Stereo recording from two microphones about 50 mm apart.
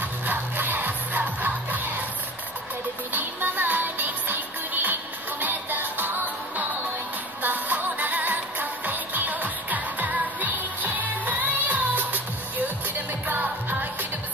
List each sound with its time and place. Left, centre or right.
0.2 s music: right
3.1 s music: right
7.4 s music: right